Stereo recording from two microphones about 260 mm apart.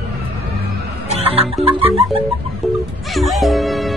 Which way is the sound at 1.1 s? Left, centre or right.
Right.